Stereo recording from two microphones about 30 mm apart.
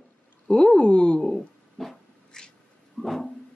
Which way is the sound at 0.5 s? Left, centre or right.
Left.